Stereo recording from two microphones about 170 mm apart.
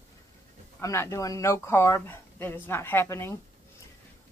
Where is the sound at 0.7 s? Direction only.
15° left (ahead or behind).